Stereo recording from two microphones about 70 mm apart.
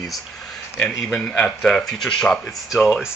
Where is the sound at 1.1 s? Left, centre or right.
Centre.